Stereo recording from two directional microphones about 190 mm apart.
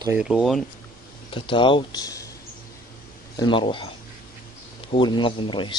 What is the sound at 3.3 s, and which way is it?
Speech, 25° left (ahead or behind).